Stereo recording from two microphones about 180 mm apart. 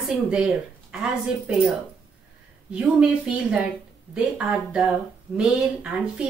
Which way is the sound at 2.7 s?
5° right (ahead or behind).